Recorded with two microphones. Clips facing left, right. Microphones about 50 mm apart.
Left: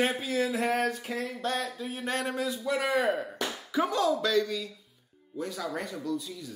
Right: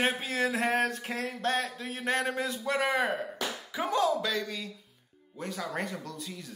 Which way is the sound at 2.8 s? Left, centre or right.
Right.